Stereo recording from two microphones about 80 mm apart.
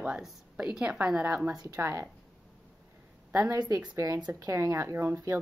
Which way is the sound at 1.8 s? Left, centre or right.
Right.